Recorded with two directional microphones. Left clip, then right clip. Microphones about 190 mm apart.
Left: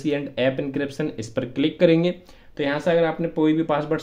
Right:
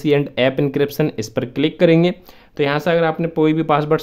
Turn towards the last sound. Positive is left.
turn(degrees=-35)  # may be behind; listen again after turning